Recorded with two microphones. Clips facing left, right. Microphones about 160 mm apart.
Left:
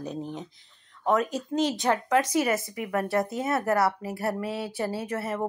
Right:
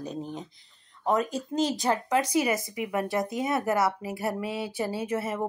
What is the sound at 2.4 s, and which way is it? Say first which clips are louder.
A woman's voice: left 1 dB; 15° right (ahead or behind).